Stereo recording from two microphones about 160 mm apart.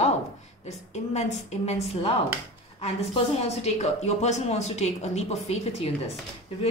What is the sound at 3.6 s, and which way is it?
A woman's voice, 45° left (ahead or behind).